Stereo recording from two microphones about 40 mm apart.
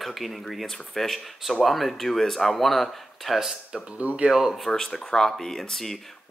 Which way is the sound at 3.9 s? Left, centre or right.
Right.